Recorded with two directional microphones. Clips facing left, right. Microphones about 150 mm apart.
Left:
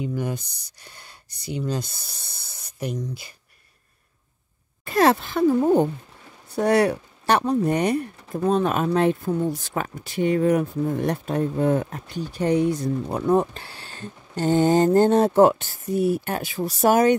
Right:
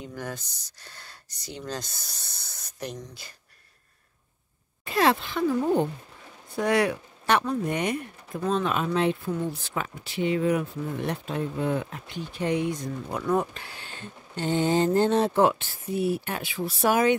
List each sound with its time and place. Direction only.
0.0 s speech: 10° left (ahead or behind)
4.8 s speech: 40° left (ahead or behind)